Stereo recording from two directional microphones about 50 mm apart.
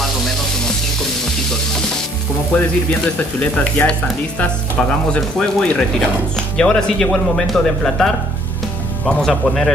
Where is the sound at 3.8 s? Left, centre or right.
Left.